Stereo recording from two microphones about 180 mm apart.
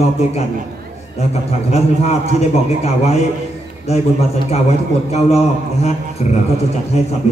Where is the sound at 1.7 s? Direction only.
35° left (ahead or behind).